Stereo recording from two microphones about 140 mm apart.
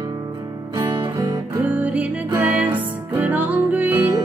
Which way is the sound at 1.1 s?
20° right (ahead or behind).